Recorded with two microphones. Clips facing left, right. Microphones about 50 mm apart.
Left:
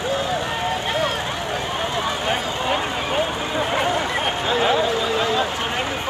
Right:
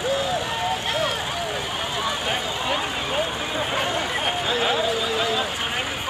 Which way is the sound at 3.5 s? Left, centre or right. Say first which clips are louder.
Left 4 dB; centre.